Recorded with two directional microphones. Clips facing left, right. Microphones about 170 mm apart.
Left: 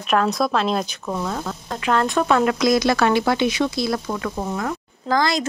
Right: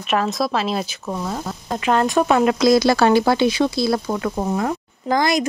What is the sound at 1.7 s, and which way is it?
Speech, 20° right (ahead or behind).